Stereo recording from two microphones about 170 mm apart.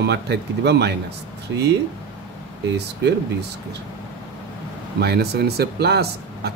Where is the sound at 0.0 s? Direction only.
90° right.